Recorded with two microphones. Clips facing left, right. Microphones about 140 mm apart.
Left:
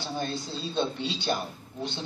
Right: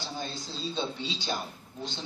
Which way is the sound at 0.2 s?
60° left (ahead or behind).